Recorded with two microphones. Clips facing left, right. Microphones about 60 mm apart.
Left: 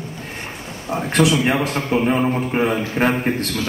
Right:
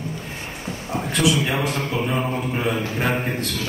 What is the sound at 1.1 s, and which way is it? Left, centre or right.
A man's voice, left.